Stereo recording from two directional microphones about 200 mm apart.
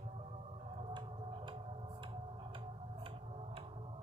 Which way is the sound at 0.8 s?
25° right (ahead or behind).